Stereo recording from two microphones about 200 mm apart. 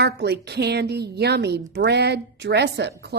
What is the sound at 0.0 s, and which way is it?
A woman's voice, 55° right (ahead or behind).